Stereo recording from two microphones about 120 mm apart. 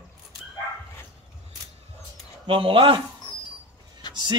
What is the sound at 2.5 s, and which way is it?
Speech, 45° right (ahead or behind).